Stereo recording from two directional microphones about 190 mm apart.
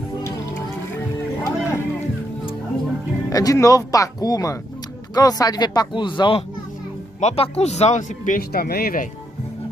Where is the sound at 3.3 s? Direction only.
20° left (ahead or behind); by 9.1 s 50° left (ahead or behind).